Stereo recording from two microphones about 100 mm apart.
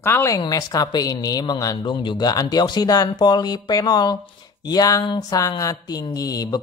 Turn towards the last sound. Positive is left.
turn(degrees=35)  # may be behind; listen again after turning